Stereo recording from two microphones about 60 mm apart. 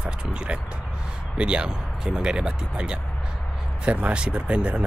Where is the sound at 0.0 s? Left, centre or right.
Centre.